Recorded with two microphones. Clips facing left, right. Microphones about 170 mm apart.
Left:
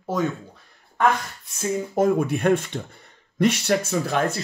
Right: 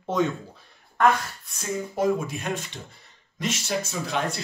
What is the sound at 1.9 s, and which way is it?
Speech, 55° left (ahead or behind).